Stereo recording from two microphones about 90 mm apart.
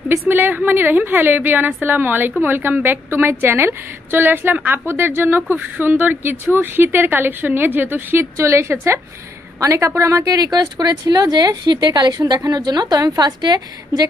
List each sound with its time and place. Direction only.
0.3 s a woman's voice: 20° right (ahead or behind); by 14.0 s 50° right (ahead or behind)